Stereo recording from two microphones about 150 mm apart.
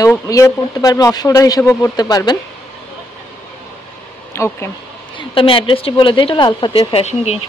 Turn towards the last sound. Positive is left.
turn(degrees=45)  # may be behind; listen again after turning